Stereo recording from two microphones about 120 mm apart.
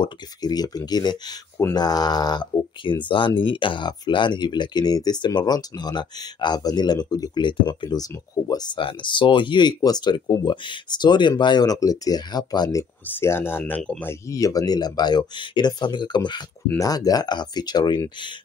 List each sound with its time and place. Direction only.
0.4 s speech: 35° left (ahead or behind)
13.0 s speech: 20° left (ahead or behind)
14.2 s speech: 25° left (ahead or behind)